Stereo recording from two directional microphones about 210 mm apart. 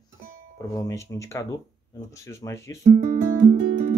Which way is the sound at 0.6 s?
15° left (ahead or behind).